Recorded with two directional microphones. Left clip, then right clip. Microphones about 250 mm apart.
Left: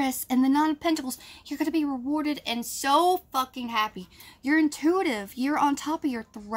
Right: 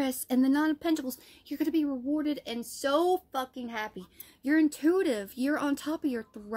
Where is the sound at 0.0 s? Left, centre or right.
Centre.